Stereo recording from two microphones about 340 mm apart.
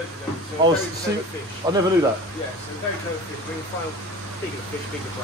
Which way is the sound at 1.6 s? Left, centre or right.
Centre.